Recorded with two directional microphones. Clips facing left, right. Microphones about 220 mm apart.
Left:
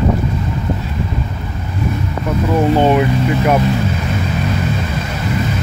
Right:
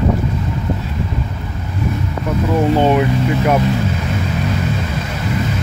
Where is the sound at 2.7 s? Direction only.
15° left (ahead or behind).